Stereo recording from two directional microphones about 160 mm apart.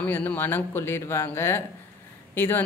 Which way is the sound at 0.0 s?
10° left (ahead or behind).